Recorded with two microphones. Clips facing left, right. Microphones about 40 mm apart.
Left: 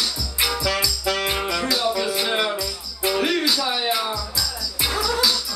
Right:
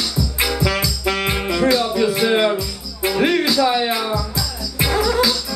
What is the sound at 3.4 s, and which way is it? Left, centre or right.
Music, right.